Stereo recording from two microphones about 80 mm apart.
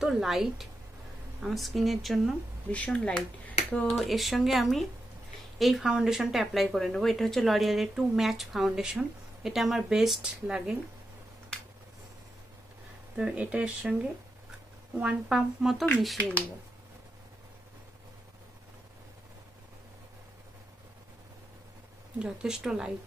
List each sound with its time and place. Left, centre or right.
0.0 s speech: centre
2.7 s speech: centre
3.9 s speech: centre
13.1 s speech: centre
16.2 s speech: centre
22.2 s speech: centre